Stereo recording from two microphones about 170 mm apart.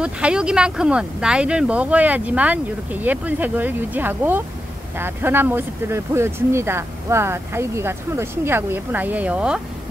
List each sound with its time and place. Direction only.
0.0 s speech: 5° right (ahead or behind)